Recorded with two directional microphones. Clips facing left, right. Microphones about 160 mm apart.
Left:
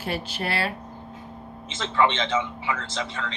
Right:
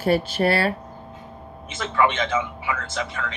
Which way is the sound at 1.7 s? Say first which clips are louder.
Right 1 dB; 25° left (ahead or behind).